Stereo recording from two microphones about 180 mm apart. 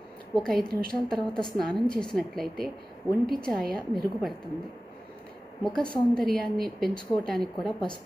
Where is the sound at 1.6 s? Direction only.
5° left (ahead or behind).